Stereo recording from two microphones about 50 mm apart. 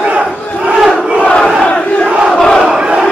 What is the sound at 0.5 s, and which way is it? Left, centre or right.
Crowd, right.